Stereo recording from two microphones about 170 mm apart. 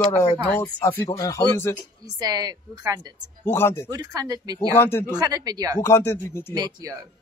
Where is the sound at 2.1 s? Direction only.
25° right (ahead or behind).